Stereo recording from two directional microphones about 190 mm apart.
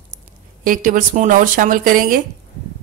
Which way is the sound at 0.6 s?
45° right (ahead or behind).